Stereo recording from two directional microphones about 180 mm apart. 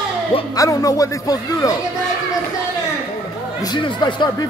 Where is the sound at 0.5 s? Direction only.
20° left (ahead or behind).